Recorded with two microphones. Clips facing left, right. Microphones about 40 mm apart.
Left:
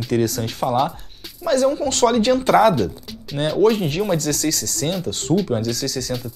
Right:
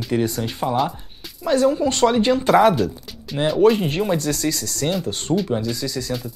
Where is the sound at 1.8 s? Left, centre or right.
Right.